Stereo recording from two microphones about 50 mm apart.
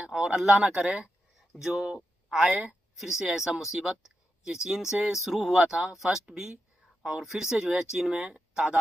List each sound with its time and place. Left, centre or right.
0.1 s speech: centre